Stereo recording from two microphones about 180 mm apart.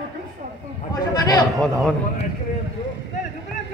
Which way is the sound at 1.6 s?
5° left (ahead or behind).